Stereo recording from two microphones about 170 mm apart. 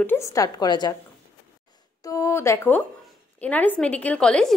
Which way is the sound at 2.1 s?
15° left (ahead or behind).